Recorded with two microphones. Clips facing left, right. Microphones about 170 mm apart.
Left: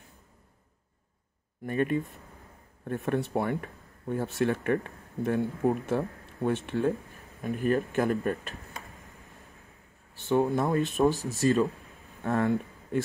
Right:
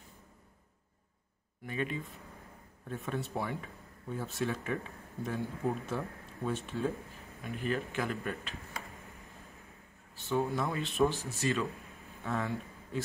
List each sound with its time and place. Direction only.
1.7 s speech: 50° left (ahead or behind)
2.9 s speech: 65° left (ahead or behind)
7.4 s speech: 50° left (ahead or behind)
10.2 s speech: 60° left (ahead or behind); by 11.7 s 40° left (ahead or behind)
12.2 s speech: 55° left (ahead or behind)